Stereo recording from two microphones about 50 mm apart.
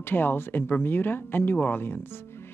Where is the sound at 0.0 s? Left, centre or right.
Left.